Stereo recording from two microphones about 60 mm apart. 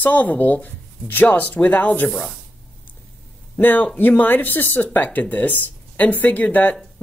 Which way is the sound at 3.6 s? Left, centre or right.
Left.